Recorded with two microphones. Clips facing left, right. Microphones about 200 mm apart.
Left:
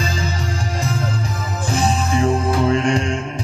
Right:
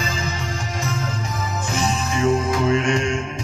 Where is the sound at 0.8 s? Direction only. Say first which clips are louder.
Left 3 dB; 35° left (ahead or behind).